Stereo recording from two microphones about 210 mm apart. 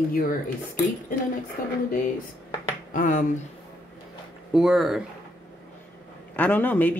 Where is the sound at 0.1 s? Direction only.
40° left (ahead or behind).